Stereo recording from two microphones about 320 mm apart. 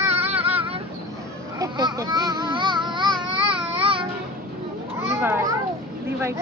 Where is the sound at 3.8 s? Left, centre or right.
Centre.